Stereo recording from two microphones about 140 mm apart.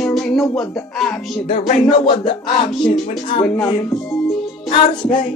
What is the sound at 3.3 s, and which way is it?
Music, 40° left (ahead or behind).